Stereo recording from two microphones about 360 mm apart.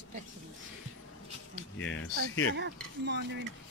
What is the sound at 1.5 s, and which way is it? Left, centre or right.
Speech, left.